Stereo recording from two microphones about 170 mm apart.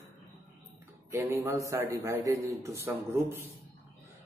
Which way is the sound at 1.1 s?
15° right (ahead or behind).